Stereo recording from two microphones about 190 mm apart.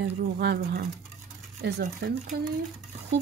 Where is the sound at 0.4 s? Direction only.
55° right (ahead or behind).